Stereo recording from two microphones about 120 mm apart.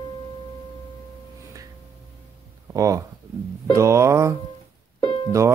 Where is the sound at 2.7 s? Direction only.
25° right (ahead or behind).